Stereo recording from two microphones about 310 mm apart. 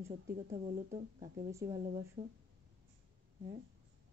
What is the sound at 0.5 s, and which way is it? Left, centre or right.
Speech, right.